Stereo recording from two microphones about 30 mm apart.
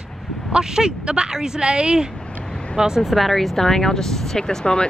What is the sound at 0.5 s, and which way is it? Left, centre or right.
Speech, right.